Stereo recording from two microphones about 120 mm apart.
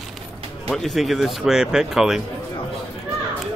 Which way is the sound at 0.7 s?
Centre (ahead or behind).